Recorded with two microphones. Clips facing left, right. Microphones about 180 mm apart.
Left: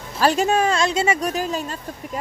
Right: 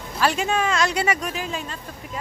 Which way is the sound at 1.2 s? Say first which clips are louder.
Left 5 dB; 40° left (ahead or behind).